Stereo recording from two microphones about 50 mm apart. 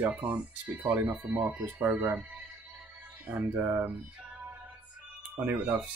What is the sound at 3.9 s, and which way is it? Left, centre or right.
Music, right.